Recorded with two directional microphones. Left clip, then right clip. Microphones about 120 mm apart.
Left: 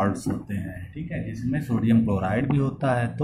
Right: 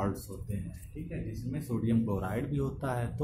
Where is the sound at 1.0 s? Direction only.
Centre (ahead or behind).